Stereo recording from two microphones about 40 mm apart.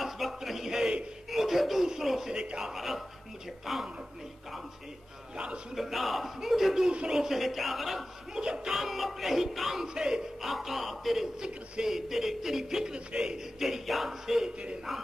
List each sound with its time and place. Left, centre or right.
0.0 s a sound: centre
1.3 s music: centre
1.9 s speech: centre
2.6 s music: centre
5.3 s a man's voice: right
5.8 s music: centre
8.4 s speech: centre
8.7 s music: centre
9.9 s speech: centre
10.4 s music: centre
11.4 s speech: right
11.9 s speech: centre
13.6 s speech: centre